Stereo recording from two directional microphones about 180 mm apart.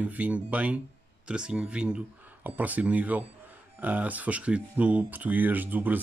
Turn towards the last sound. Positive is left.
turn(degrees=-10)  # may be behind; listen again after turning